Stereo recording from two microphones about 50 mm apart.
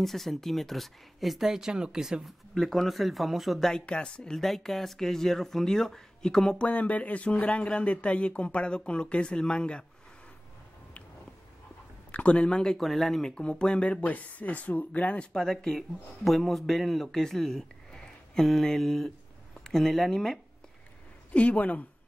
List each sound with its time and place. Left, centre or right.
0.0 s speech: centre
2.5 s speech: centre
3.8 s speech: centre
4.4 s speech: centre
6.6 s speech: left
12.1 s speech: left
12.7 s speech: centre
13.8 s speech: left
15.3 s a man's voice: centre
21.3 s speech: left